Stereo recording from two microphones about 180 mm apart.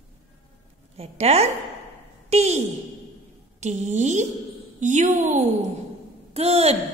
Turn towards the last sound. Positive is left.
turn(degrees=-35)  # may be behind; listen again after turning